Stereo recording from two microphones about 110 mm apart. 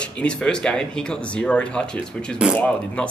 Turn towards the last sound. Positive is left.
turn(degrees=10)  # may be behind; listen again after turning